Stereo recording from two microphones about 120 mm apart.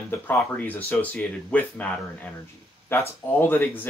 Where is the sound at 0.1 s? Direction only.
15° left (ahead or behind).